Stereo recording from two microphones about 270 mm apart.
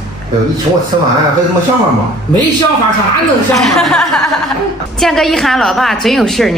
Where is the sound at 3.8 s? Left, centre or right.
Centre.